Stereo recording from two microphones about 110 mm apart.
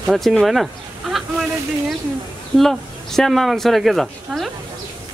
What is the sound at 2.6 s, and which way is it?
Speech, centre (ahead or behind).